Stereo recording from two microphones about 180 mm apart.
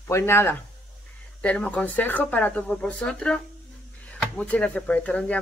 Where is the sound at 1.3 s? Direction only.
5° left (ahead or behind).